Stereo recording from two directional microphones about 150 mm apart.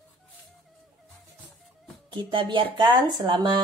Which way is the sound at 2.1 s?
35° right (ahead or behind).